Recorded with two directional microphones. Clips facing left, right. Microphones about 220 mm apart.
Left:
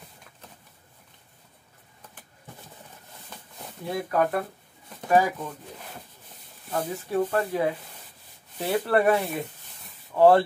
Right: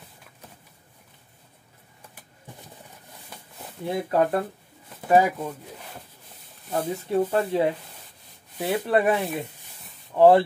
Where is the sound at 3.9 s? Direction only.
25° right (ahead or behind).